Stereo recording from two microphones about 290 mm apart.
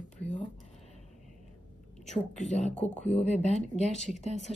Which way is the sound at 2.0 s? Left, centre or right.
Left.